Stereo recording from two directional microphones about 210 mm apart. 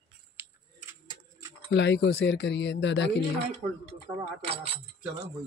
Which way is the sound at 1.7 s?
55° left (ahead or behind).